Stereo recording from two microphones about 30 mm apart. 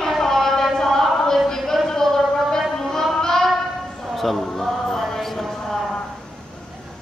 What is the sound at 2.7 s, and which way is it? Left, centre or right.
Music, centre.